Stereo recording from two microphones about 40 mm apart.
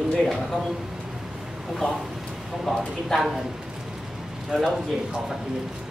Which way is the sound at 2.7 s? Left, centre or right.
Centre.